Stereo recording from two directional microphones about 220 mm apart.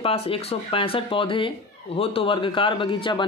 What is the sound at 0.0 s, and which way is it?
A woman's voice, 25° left (ahead or behind).